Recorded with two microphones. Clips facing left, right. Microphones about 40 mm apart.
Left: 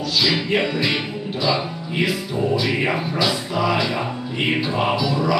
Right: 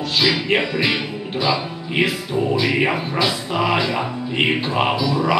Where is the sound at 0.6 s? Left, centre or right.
Centre.